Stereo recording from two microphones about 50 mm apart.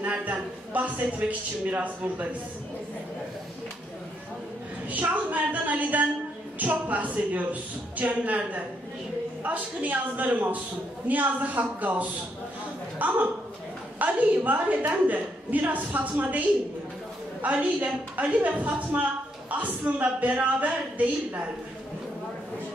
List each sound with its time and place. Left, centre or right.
0.1 s a sound: right
1.7 s a woman's voice: right
4.8 s a woman's voice: right